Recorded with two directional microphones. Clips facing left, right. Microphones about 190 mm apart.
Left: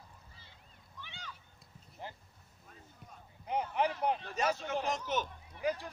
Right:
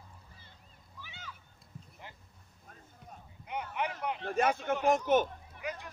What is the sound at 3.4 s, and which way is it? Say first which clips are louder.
Speech: left 4 dB; 30° left (ahead or behind).